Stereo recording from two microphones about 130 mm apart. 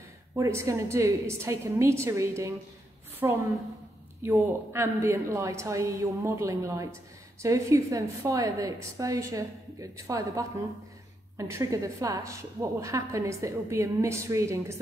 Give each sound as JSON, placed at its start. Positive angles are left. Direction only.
{"t": 0.4, "sound": "a woman's voice", "side_deg": -25}